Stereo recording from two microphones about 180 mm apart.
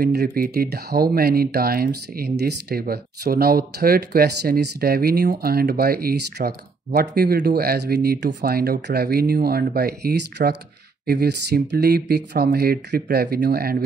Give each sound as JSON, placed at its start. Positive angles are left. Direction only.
{"t": 0.0, "sound": "speech", "side_deg": -60}